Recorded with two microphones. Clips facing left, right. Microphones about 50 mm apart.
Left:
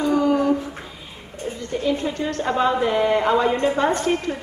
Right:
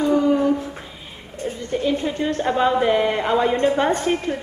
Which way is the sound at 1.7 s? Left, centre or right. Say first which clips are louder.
Right 1 dB; centre.